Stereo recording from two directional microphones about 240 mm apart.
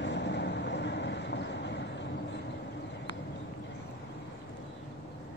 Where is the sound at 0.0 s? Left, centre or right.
Left.